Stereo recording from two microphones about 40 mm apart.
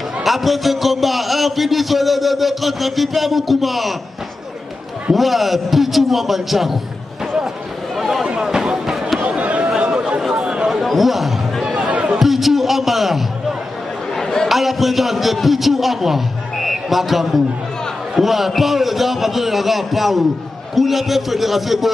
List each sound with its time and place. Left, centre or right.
0.2 s a man's voice: centre
5.1 s a man's voice: centre
8.0 s speech: centre
8.4 s speech: centre
9.8 s chatter: right
10.4 s a sound: right
10.7 s a sound: centre
11.9 s chatter: right
12.2 s a man's voice: centre
14.2 s chatter: centre
14.5 s a man's voice: centre